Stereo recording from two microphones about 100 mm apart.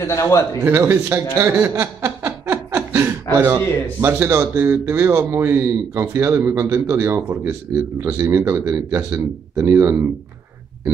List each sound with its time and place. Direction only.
0.0 s a man's voice: 30° left (ahead or behind)
0.6 s a man's voice: 25° right (ahead or behind)
1.4 s chuckle: 25° right (ahead or behind)
4.0 s a man's voice: 25° right (ahead or behind)